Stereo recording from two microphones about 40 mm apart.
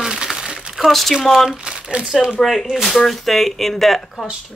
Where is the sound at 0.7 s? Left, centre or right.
Centre.